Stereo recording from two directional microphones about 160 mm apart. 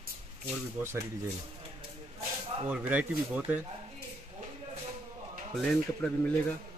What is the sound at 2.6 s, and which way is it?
Speech, 10° right (ahead or behind).